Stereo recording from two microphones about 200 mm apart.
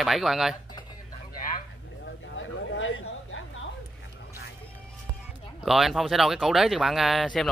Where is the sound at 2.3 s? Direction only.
70° left (ahead or behind).